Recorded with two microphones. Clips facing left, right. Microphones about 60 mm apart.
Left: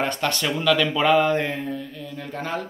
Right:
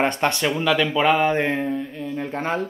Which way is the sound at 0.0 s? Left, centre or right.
Right.